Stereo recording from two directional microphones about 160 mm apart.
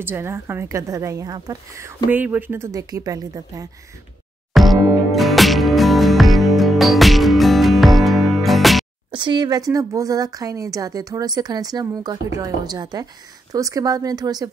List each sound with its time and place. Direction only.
0.0 s speech: 15° right (ahead or behind)
4.6 s music: centre (ahead or behind)
9.1 s speech: 30° right (ahead or behind)